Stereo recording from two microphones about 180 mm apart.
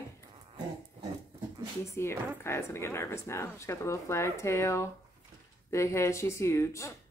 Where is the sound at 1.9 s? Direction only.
15° left (ahead or behind).